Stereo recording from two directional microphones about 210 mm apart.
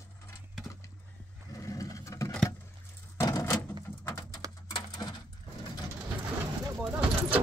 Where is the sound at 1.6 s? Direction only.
15° left (ahead or behind).